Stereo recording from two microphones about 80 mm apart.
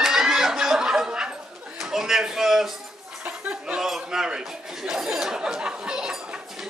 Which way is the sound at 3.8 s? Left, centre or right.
Centre.